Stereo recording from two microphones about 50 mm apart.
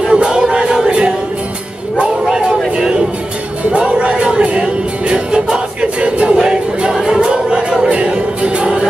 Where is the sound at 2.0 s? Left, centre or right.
Centre.